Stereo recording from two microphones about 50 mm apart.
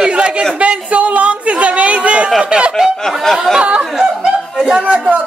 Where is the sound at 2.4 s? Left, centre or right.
Right.